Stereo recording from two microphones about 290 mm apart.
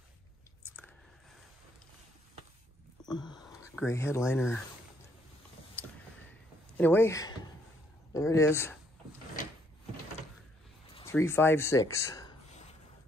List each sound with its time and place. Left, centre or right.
3.1 s a sound: centre
3.4 s speech: centre
6.8 s speech: centre
11.0 s speech: centre